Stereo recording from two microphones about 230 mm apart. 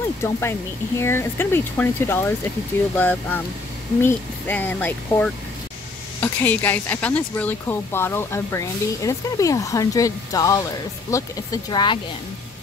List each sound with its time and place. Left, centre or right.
0.2 s speech: centre